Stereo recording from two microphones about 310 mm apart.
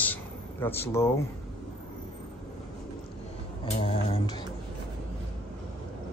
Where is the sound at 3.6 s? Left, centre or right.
Centre.